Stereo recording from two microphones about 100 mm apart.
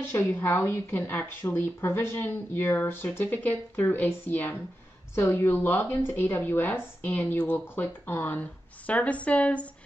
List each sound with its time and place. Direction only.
0.1 s a woman's voice: 20° left (ahead or behind)